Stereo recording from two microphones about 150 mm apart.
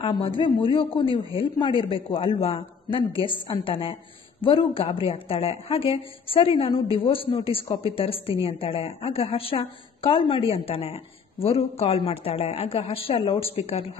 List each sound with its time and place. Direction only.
0.4 s a woman's voice: 35° left (ahead or behind)